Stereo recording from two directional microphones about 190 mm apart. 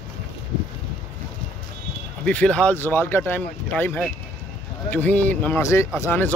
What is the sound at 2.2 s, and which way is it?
Speech, 5° left (ahead or behind).